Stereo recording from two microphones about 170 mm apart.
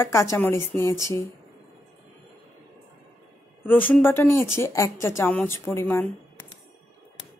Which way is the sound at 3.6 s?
10° left (ahead or behind).